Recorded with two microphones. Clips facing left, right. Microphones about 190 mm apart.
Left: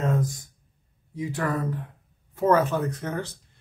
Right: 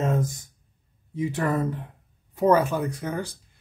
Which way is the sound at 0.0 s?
25° right (ahead or behind).